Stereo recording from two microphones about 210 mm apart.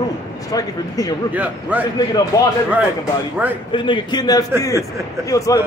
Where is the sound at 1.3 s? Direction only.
5° right (ahead or behind).